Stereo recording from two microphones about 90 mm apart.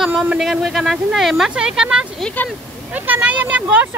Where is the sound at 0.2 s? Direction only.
5° right (ahead or behind).